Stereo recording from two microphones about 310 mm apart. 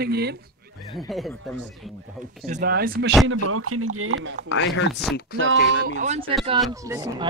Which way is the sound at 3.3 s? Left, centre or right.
Right.